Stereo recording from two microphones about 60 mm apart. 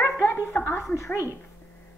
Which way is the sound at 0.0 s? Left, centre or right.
Left.